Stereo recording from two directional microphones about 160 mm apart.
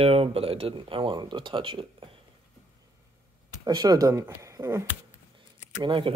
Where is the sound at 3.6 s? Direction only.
25° right (ahead or behind).